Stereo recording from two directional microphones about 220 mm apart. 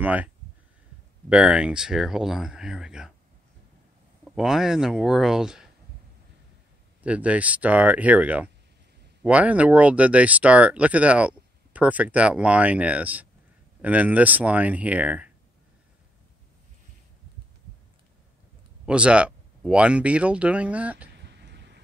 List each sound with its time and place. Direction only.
0.0 s speech: 5° right (ahead or behind)
1.3 s speech: 5° right (ahead or behind)
4.2 s speech: centre (ahead or behind)
7.0 s speech: 5° right (ahead or behind)
18.9 s speech: 5° right (ahead or behind)
21.2 s a sound: 50° right (ahead or behind)